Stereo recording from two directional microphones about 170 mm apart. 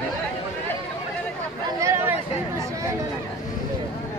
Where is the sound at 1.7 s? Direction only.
15° right (ahead or behind).